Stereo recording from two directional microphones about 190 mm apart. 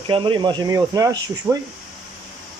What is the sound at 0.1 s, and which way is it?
Speech, 25° right (ahead or behind).